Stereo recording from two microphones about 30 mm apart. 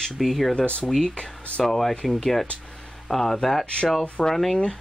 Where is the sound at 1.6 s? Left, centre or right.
Centre.